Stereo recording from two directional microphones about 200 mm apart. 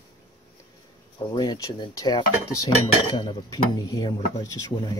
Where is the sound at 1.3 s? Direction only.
20° left (ahead or behind).